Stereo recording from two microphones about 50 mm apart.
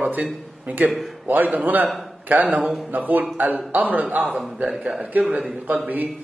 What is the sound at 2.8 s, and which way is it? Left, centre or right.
A man's voice, right.